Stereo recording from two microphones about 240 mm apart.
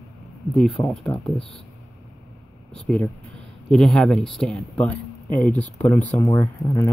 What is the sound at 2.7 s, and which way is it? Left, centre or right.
Speech, centre.